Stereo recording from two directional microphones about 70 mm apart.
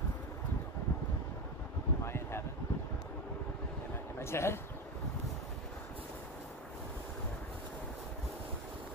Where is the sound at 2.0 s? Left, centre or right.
Left.